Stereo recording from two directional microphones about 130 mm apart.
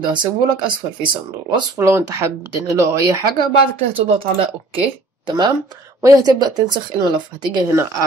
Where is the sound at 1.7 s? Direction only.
20° right (ahead or behind).